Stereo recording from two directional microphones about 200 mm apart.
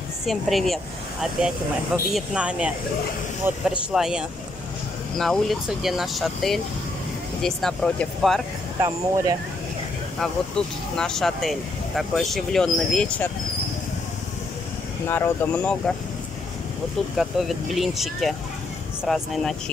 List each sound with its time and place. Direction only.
0.3 s speech: centre (ahead or behind)
2.1 s speech: 5° right (ahead or behind)
8.8 s speech: 20° right (ahead or behind)
11.0 s speech: 5° left (ahead or behind)
15.0 s speech: 10° left (ahead or behind)
17.2 s speech: centre (ahead or behind)